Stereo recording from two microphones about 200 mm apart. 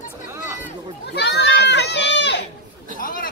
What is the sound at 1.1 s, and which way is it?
Children playing, 60° left (ahead or behind).